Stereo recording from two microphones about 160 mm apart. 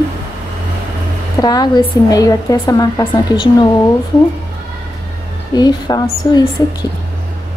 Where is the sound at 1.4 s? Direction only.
25° left (ahead or behind).